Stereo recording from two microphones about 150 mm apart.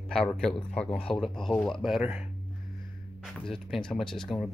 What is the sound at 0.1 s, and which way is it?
Speech, 5° left (ahead or behind).